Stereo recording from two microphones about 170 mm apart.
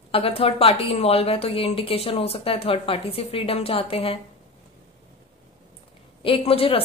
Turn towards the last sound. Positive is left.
turn(degrees=35)  # may be behind; listen again after turning